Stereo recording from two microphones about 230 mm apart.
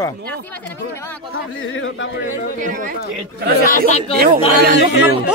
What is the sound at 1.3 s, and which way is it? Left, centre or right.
Speech, left.